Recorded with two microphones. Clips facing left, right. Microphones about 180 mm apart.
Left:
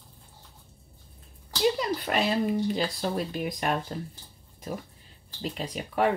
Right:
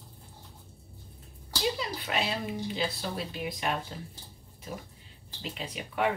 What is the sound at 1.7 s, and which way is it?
Speech, 45° left (ahead or behind).